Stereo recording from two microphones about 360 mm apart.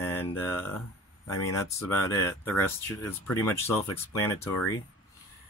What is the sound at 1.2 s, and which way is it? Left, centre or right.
Speech, left.